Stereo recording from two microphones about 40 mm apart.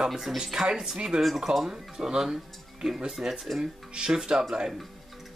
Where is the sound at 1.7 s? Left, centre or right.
Centre.